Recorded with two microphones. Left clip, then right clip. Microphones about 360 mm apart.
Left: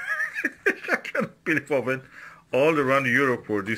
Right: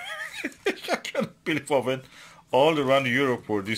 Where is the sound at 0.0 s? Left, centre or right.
Centre.